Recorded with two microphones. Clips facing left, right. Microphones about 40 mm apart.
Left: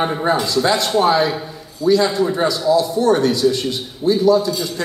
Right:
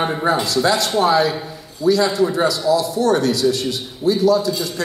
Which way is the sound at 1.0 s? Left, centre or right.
Left.